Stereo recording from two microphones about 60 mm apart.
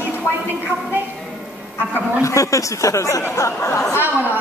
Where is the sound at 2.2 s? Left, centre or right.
Left.